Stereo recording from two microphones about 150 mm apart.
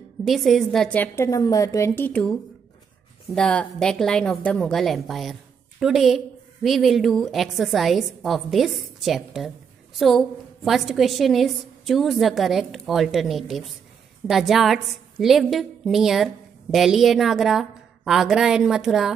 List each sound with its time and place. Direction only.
0.2 s a woman's voice: centre (ahead or behind)
3.3 s a woman's voice: 5° left (ahead or behind)